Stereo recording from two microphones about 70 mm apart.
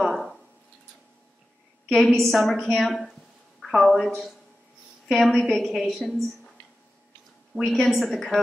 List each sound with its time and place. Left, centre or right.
0.0 s a sound: centre
1.9 s a woman's voice: centre
7.6 s a woman's voice: centre